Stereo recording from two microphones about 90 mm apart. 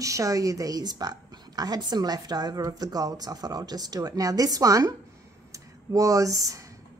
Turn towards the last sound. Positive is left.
turn(degrees=-40)  # may be behind; listen again after turning